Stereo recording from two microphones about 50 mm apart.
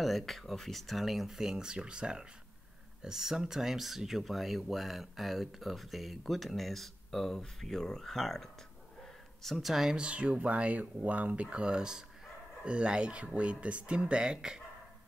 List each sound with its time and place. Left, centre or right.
0.0 s speech: centre
9.9 s speech: right
11.5 s speech: centre